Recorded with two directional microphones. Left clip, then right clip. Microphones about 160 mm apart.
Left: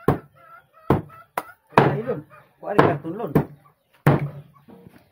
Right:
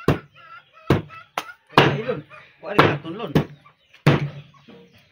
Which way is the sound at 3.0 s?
50° left (ahead or behind).